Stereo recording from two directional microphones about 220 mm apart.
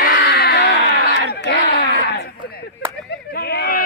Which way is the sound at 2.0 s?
45° left (ahead or behind).